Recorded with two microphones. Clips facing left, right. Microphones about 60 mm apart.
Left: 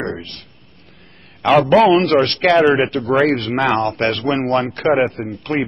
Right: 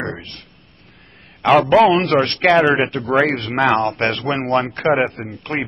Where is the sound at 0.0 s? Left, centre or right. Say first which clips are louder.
Left 2 dB; centre.